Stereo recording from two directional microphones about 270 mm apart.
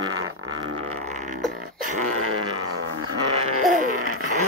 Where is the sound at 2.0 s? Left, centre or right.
Right.